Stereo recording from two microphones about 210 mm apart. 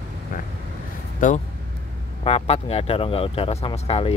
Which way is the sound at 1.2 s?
40° left (ahead or behind).